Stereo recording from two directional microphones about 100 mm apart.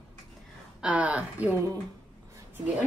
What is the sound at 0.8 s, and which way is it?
Speech, 15° right (ahead or behind).